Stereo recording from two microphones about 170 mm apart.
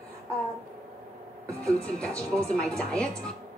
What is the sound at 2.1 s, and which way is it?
Speech, 15° right (ahead or behind).